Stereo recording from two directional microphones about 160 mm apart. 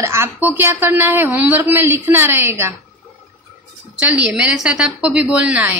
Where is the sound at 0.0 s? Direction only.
15° right (ahead or behind).